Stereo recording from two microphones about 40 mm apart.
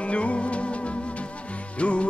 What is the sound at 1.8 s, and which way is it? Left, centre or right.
Music, left.